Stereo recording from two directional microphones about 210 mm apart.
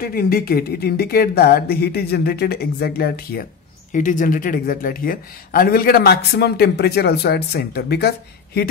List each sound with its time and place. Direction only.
0.0 s speech: 45° left (ahead or behind)